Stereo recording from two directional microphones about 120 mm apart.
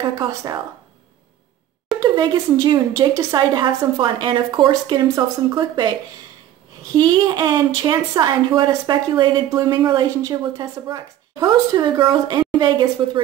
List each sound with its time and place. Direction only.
0.3 s speech: 25° right (ahead or behind)
2.0 s a woman's voice: 35° right (ahead or behind)
5.0 s speech: 25° right (ahead or behind)
5.6 s a woman's voice: 40° right (ahead or behind)